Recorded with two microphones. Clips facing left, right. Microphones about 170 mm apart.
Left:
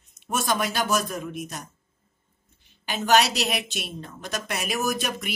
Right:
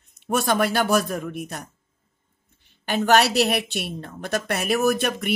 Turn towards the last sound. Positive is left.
turn(degrees=-60)  # may be behind; listen again after turning